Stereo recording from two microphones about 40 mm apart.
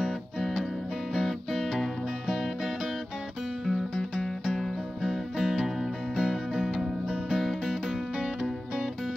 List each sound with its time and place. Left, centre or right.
0.4 s music: centre
4.6 s music: centre
8.2 s music: right